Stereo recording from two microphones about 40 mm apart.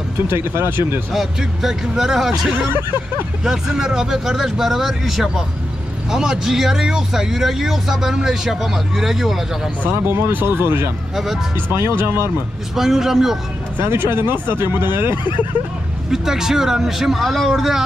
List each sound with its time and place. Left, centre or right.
0.3 s speech: right
1.1 s speech: centre
10.0 s speech: right
11.7 s speech: right
12.7 s speech: centre
13.7 s speech: right
16.1 s speech: centre